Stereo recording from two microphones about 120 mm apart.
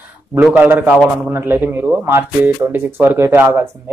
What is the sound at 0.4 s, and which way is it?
Speech, 10° right (ahead or behind).